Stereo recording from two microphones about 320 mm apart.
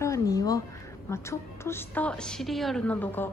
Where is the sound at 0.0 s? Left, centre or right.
Centre.